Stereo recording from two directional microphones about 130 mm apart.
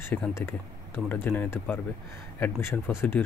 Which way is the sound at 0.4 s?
15° left (ahead or behind).